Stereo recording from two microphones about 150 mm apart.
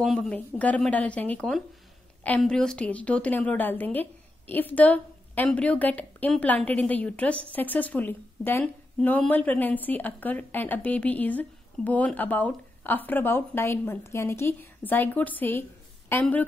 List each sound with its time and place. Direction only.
0.0 s a woman's voice: centre (ahead or behind)